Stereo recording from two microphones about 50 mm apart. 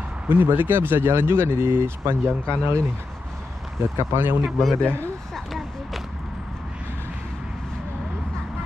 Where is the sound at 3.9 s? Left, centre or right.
Right.